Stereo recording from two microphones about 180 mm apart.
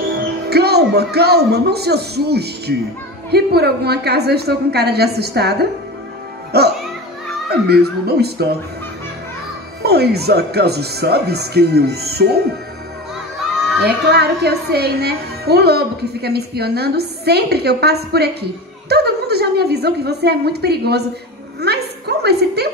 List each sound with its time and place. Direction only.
0.5 s a woman's voice: 65° right (ahead or behind)
9.8 s a woman's voice: 65° right (ahead or behind)
13.8 s a woman's voice: 65° right (ahead or behind)